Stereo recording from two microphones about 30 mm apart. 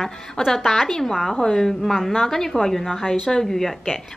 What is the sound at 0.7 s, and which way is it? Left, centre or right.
Speech, centre.